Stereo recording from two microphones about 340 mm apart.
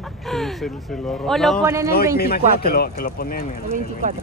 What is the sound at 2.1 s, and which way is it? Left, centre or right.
Speech, left.